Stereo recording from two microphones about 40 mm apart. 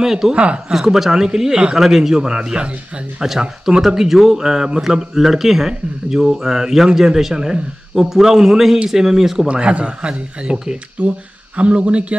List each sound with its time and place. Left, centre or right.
0.0 s speech: centre
0.3 s a man's voice: right
0.7 s speech: centre
1.8 s speech: centre
9.5 s a man's voice: right